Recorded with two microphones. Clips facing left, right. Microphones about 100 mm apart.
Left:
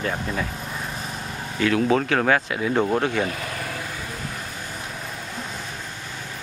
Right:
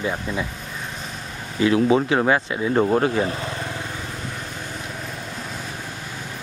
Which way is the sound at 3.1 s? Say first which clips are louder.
Right 2 dB; 30° right (ahead or behind).